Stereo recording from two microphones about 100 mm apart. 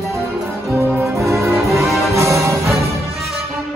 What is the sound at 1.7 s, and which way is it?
Music, centre (ahead or behind).